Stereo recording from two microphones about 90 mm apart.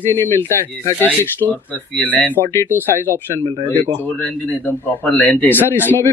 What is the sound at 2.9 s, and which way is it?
Speech, 25° left (ahead or behind).